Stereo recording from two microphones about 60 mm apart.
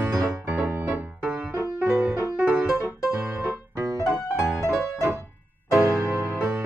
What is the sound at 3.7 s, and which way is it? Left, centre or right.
Piano, right.